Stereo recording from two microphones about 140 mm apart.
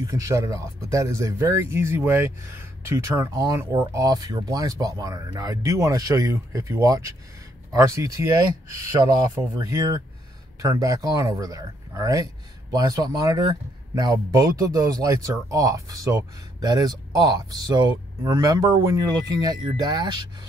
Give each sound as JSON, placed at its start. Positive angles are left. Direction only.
{"t": 0.0, "sound": "speech", "side_deg": -25}